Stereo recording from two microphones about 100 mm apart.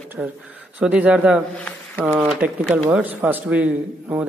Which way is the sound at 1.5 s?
15° left (ahead or behind).